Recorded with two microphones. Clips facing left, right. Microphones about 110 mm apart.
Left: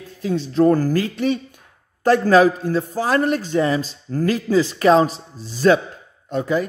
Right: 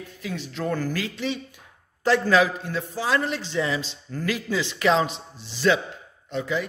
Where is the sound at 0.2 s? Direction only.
30° left (ahead or behind).